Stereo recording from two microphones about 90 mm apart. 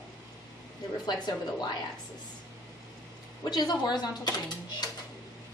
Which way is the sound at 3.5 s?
50° left (ahead or behind).